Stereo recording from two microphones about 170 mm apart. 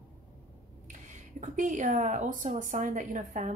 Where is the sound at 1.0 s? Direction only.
45° right (ahead or behind).